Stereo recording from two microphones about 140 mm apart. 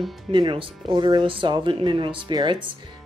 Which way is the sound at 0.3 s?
35° right (ahead or behind).